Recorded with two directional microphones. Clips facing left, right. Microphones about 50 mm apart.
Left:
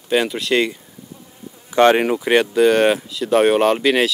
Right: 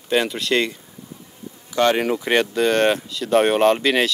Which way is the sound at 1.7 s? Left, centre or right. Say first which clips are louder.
Left 5 dB; left.